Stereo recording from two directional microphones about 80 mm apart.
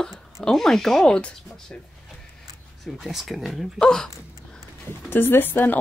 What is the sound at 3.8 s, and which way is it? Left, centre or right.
Speech, centre.